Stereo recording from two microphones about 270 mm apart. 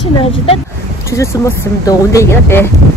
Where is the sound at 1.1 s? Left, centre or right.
Centre.